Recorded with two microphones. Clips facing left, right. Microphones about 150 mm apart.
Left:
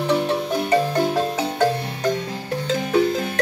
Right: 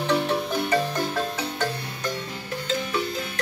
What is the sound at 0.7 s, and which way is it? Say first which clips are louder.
Marimba: left 8 dB; 25° left (ahead or behind).